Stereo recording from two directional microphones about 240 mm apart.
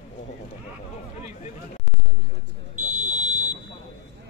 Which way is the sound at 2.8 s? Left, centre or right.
Right.